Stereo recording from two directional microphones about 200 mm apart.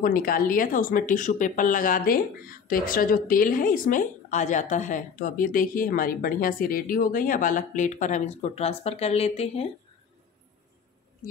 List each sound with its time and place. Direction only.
0.0 s speech: 45° left (ahead or behind)